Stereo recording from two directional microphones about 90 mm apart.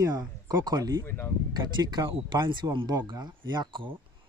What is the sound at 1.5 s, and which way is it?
Speech, 55° right (ahead or behind).